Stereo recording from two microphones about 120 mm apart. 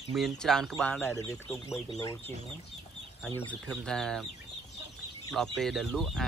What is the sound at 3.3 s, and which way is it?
Speech, 10° left (ahead or behind).